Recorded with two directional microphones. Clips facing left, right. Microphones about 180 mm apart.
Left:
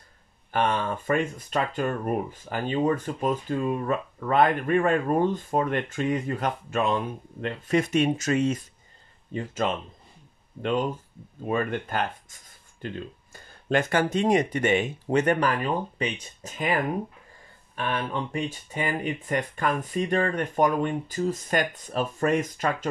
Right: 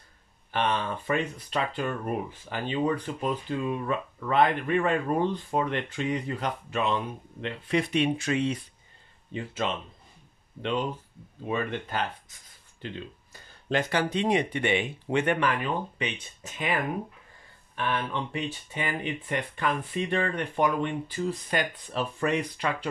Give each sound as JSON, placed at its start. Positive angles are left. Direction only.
{"t": 0.5, "sound": "speech", "side_deg": 50}